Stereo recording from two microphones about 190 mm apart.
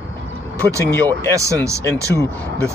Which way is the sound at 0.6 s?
15° right (ahead or behind).